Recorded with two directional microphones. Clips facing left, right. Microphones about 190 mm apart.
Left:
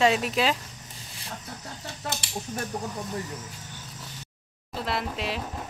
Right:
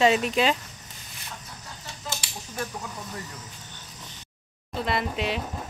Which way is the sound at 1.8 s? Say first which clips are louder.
Left 2 dB; 60° left (ahead or behind).